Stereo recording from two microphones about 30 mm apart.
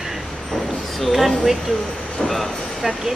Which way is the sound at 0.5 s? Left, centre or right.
Centre.